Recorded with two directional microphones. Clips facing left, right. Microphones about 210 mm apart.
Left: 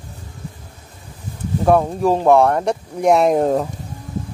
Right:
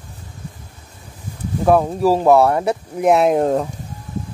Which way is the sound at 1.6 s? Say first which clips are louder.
Right 1 dB; centre (ahead or behind).